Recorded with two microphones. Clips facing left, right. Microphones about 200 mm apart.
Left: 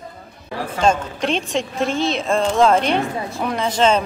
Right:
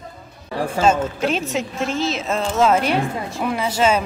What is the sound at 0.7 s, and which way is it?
A woman's voice, 5° right (ahead or behind).